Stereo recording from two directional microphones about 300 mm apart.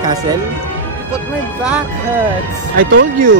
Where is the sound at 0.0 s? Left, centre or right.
Centre.